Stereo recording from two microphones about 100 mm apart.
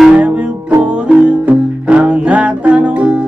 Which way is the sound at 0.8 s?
10° right (ahead or behind).